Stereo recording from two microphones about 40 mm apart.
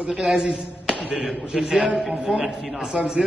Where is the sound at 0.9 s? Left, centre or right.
Right.